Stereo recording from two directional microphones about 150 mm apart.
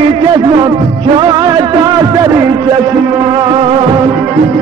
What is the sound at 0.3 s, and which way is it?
Music, 30° right (ahead or behind).